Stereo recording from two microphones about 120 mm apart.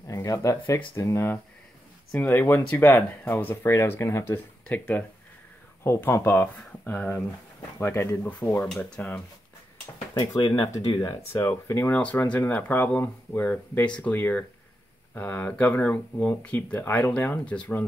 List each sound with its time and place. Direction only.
0.1 s speech: 25° left (ahead or behind)
8.3 s speech: 10° left (ahead or behind)
10.1 s speech: 40° left (ahead or behind); by 11.9 s 20° left (ahead or behind)
11.9 s speech: 10° left (ahead or behind)